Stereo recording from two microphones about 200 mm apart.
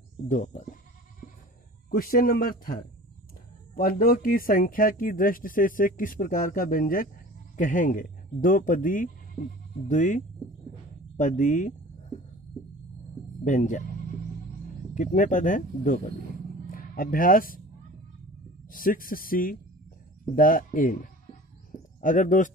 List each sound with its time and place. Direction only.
0.3 s speech: 40° left (ahead or behind)
1.9 s speech: 45° left (ahead or behind)
13.4 s speech: 40° left (ahead or behind)
15.0 s speech: 40° left (ahead or behind)
18.7 s speech: 45° left (ahead or behind)